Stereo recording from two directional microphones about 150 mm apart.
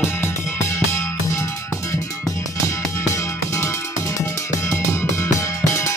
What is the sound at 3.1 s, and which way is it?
Music, 20° left (ahead or behind).